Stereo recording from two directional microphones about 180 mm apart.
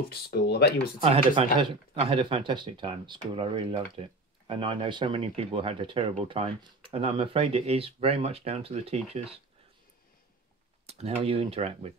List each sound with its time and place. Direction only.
0.1 s speech: 60° left (ahead or behind)
1.0 s speech: 35° right (ahead or behind)
10.9 s speech: 35° right (ahead or behind)